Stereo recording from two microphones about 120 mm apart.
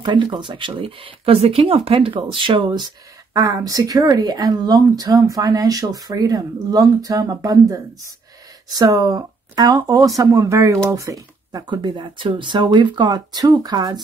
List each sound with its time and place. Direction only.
0.0 s speech: 40° right (ahead or behind)
3.3 s speech: 30° right (ahead or behind)
11.6 s speech: 40° right (ahead or behind)